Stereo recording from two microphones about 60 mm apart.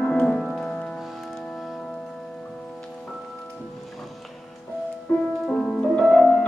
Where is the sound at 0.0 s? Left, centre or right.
Centre.